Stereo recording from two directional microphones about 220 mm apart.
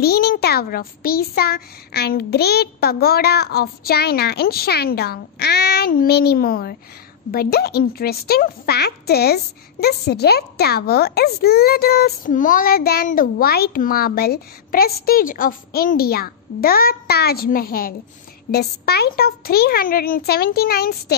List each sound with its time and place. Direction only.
0.0 s speech: 45° left (ahead or behind)